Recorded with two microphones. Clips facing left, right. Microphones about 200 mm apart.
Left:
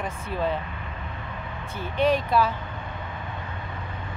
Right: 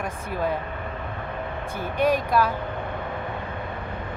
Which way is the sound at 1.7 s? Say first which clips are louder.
Even; 10° right (ahead or behind).